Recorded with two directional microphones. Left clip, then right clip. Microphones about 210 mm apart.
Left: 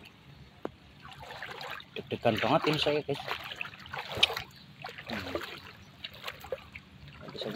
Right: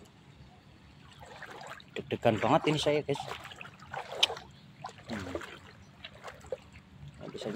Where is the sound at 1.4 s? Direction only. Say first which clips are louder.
Left 4 dB; 10° left (ahead or behind).